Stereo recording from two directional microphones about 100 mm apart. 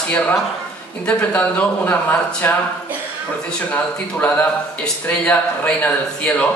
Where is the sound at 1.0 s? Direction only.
15° left (ahead or behind).